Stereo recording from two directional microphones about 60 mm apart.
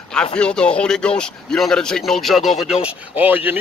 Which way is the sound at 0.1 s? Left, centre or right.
Centre.